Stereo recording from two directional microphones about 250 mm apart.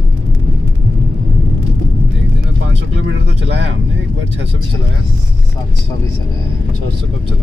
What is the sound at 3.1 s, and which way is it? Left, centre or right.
Vehicle, right.